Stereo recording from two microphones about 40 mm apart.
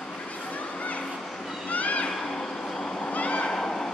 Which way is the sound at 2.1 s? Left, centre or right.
Centre.